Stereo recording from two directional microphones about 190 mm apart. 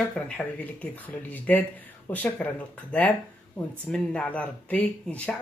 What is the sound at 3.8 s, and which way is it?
Speech, 5° left (ahead or behind).